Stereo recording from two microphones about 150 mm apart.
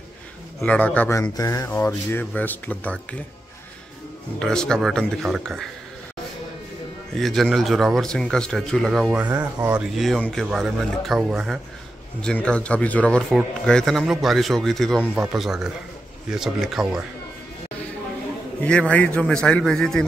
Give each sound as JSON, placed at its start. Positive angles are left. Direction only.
{"t": 0.6, "sound": "speech", "side_deg": 10}
{"t": 4.4, "sound": "a man's voice", "side_deg": 5}
{"t": 7.2, "sound": "a man's voice", "side_deg": 0}
{"t": 9.2, "sound": "a man's voice", "side_deg": -10}
{"t": 18.6, "sound": "speech", "side_deg": 10}